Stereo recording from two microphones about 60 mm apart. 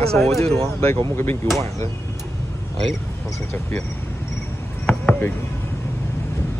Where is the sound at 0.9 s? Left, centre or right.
Left.